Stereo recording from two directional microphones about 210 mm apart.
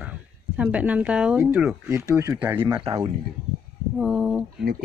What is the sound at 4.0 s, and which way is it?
Speech, 5° right (ahead or behind).